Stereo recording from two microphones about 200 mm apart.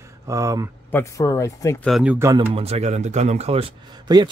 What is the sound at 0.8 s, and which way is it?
Speech, 15° left (ahead or behind).